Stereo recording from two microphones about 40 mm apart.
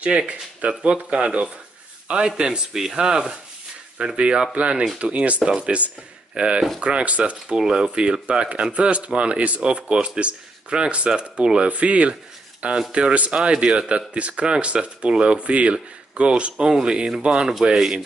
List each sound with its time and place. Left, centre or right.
0.3 s speech: right
2.7 s speech: centre; by 7.5 s right
7.5 s speech: centre
8.0 s speech: right; by 17.6 s centre